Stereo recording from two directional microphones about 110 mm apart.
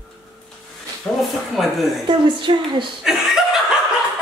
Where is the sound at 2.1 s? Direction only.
45° right (ahead or behind).